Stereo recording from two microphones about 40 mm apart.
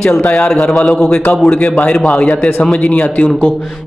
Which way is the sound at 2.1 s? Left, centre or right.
Left.